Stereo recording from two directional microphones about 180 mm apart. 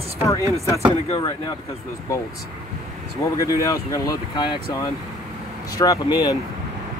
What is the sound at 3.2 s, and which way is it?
Speech, 20° left (ahead or behind).